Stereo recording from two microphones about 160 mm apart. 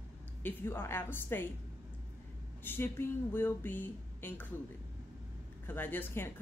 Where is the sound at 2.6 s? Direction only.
15° left (ahead or behind).